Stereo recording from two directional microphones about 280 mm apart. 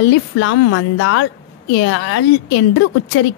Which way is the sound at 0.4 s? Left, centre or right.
Left.